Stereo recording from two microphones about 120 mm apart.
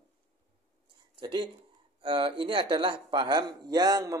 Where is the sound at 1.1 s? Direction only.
40° right (ahead or behind).